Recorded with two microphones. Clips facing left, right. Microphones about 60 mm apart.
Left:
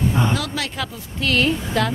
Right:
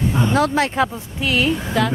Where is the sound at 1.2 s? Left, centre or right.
Centre.